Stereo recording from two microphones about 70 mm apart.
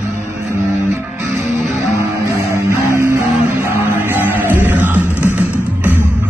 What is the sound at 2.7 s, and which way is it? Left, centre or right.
Music, right.